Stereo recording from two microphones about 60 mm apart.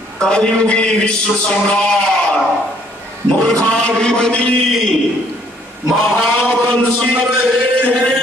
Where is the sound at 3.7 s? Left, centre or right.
Centre.